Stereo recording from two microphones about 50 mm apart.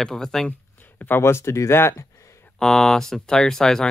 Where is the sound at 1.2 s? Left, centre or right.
Left.